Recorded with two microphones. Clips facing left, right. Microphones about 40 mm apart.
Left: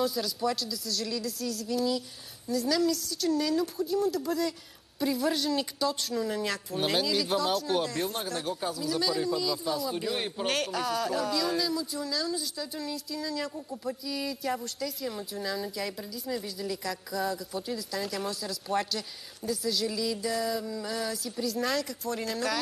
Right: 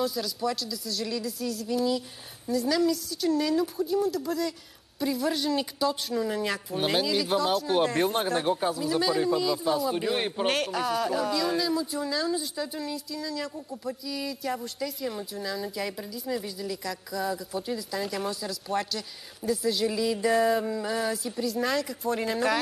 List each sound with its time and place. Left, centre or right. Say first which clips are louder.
0.0 s a woman's voice: even; centre
7.8 s speech: right 7 dB; right
10.5 s a woman's voice: left 1 dB; centre
12.7 s a woman's voice: right 1 dB; centre; by 20.7 s right
20.7 s a woman's voice: right 4 dB; right
22.0 s speech: right 5 dB; centre